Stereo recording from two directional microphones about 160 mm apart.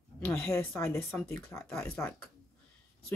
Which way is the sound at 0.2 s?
15° left (ahead or behind).